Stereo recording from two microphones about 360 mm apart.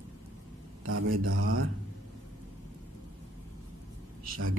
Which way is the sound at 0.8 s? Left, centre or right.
Right.